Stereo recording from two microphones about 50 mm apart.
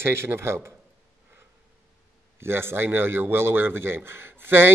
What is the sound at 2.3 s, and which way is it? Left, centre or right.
A man's voice, right.